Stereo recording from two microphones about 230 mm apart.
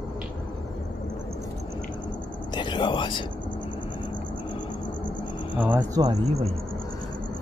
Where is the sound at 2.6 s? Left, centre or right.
Left.